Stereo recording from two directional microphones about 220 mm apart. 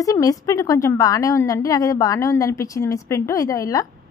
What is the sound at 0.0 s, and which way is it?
A woman's voice, 15° left (ahead or behind).